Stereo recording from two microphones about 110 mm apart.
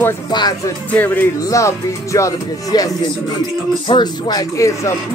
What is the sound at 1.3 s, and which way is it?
Speech, 30° left (ahead or behind).